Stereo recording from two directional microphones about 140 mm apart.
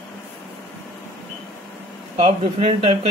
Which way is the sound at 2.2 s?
45° right (ahead or behind).